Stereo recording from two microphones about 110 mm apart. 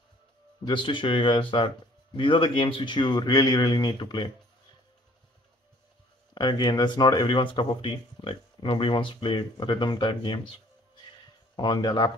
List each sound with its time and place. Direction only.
0.7 s speech: 45° left (ahead or behind)
6.3 s speech: 40° left (ahead or behind)
11.5 s speech: 40° left (ahead or behind)